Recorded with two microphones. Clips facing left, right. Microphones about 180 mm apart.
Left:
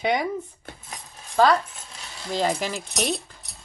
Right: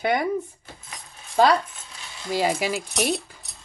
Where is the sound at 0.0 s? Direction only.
55° right (ahead or behind).